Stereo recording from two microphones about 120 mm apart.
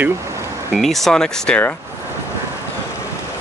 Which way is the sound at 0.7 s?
Centre (ahead or behind).